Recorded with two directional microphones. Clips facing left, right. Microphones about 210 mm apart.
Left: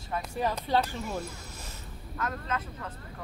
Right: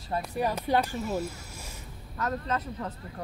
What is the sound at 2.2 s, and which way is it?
Speech, 35° right (ahead or behind).